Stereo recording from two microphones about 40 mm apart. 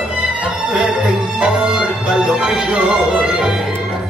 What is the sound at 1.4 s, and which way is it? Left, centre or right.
Music, right.